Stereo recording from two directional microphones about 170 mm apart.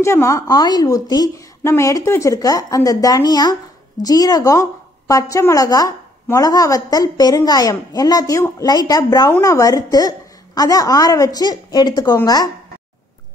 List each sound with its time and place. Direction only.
0.0 s a woman's voice: 15° left (ahead or behind)